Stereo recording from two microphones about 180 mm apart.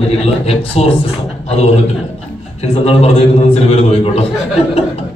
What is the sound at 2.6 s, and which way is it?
A man's voice, 35° left (ahead or behind).